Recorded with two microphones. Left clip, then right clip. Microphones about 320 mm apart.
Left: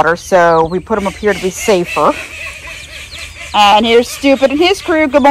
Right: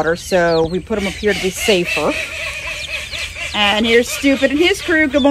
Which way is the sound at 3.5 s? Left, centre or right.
Centre.